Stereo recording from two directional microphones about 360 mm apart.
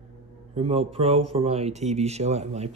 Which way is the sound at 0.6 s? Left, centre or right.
Centre.